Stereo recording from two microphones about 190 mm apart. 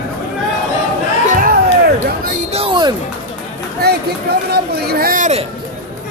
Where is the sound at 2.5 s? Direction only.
25° right (ahead or behind).